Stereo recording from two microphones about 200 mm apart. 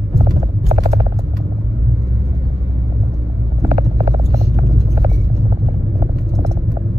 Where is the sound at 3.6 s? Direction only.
15° right (ahead or behind).